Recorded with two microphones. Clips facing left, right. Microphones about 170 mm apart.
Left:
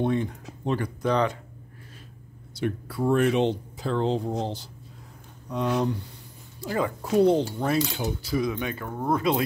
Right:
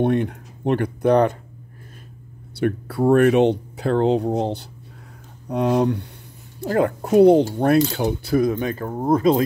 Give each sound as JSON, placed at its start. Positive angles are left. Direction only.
{"t": 0.0, "sound": "speech", "side_deg": -65}
{"t": 2.6, "sound": "speech", "side_deg": -60}